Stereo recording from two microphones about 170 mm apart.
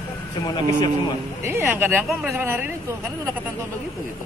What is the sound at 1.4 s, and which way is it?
Speech, 15° right (ahead or behind).